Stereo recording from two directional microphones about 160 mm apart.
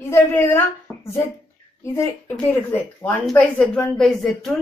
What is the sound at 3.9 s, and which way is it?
Speech, centre (ahead or behind).